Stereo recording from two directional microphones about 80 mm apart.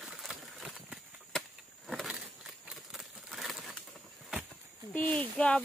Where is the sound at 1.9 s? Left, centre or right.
Centre.